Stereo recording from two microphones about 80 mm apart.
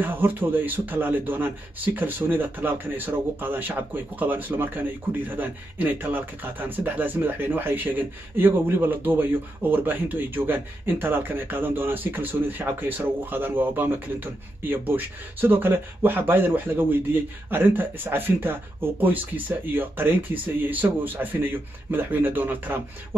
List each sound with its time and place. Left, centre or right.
0.0 s speech: right